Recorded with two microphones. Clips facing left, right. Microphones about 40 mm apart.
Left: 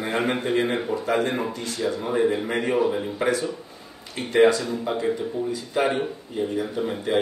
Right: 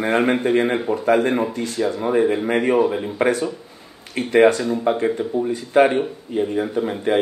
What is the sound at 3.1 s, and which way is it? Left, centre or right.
Speech, right.